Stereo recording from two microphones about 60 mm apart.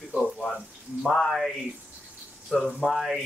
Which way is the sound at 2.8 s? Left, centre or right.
Centre.